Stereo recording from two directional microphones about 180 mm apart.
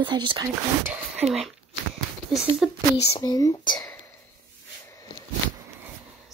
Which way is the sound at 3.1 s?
20° left (ahead or behind).